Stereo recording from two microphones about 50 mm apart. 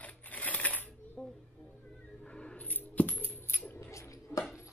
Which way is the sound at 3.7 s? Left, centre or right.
Left.